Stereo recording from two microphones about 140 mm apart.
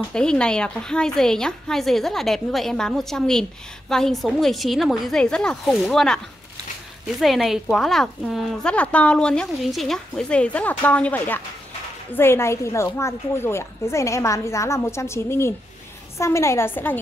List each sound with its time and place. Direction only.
0.1 s a woman's voice: 5° left (ahead or behind)